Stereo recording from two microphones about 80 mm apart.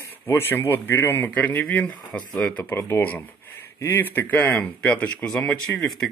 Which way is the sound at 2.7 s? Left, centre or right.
Left.